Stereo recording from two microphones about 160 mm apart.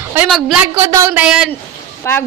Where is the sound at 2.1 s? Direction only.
15° left (ahead or behind).